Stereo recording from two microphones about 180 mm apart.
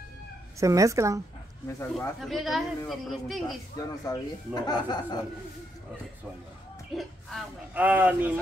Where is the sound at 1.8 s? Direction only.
15° left (ahead or behind).